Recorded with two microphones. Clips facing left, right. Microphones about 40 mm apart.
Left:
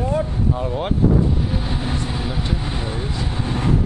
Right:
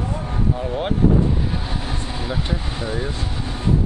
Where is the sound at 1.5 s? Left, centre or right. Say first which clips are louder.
Left 3 dB; centre.